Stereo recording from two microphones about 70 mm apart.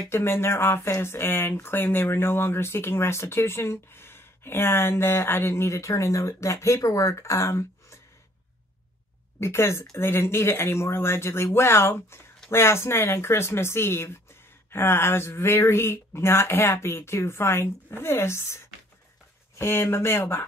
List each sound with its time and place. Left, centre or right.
0.1 s speech: left
9.4 s speech: left
19.6 s speech: left